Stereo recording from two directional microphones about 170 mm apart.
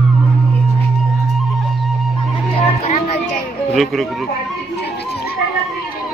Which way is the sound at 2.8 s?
45° left (ahead or behind).